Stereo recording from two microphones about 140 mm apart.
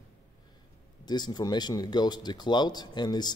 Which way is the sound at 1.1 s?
30° left (ahead or behind).